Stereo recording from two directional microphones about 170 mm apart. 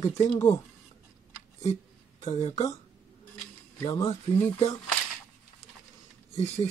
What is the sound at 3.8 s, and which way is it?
Speech, 25° left (ahead or behind).